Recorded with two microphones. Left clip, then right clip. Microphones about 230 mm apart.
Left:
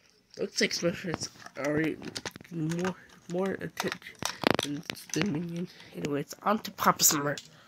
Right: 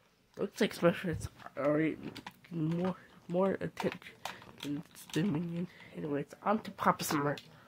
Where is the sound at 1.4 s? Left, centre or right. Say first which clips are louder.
Even; centre.